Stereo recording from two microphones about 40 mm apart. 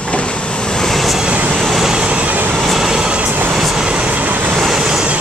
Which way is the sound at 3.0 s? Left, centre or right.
Right.